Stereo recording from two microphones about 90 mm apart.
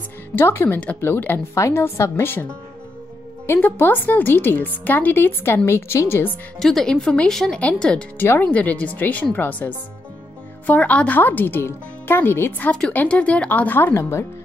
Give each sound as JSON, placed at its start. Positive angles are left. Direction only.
{"t": 0.4, "sound": "a woman's voice", "side_deg": 25}
{"t": 3.4, "sound": "speech", "side_deg": 25}
{"t": 6.6, "sound": "speech", "side_deg": 5}
{"t": 8.2, "sound": "speech", "side_deg": 20}